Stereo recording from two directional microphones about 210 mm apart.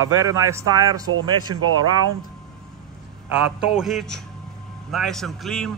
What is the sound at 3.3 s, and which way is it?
A man's voice, 5° right (ahead or behind).